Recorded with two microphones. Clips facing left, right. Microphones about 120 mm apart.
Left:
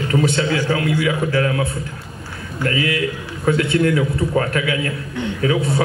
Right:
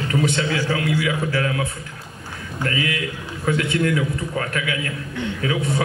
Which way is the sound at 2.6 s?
35° left (ahead or behind).